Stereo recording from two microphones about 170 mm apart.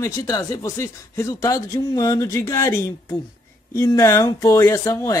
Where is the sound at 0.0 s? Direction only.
20° left (ahead or behind).